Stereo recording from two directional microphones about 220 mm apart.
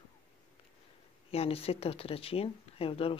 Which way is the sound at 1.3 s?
25° left (ahead or behind).